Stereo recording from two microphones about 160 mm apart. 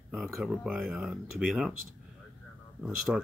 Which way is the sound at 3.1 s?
Centre (ahead or behind).